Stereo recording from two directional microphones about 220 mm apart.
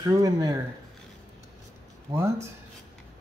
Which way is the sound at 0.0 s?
15° right (ahead or behind).